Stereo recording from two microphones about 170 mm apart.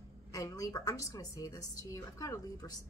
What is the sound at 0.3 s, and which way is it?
A woman's voice, 20° left (ahead or behind).